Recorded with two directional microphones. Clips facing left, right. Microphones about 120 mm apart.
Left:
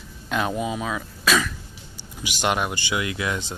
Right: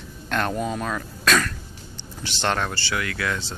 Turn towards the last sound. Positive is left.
turn(degrees=20)  # may be behind; listen again after turning